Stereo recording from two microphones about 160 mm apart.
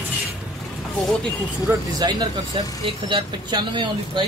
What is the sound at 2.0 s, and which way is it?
Speech, 25° right (ahead or behind).